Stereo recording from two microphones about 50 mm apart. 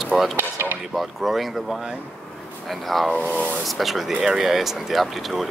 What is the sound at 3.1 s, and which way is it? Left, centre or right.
Speech, left.